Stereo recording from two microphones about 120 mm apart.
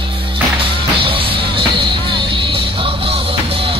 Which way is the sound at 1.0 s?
45° right (ahead or behind).